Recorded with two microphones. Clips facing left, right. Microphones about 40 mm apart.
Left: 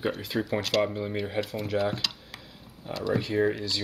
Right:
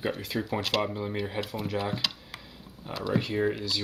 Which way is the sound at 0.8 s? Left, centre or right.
Centre.